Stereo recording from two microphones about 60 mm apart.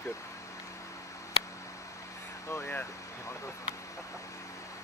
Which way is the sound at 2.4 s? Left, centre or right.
Left.